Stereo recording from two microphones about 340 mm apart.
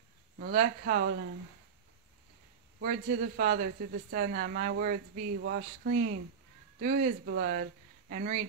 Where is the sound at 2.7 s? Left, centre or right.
Right.